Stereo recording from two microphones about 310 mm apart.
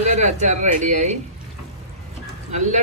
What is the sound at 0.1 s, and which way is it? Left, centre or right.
Speech, right.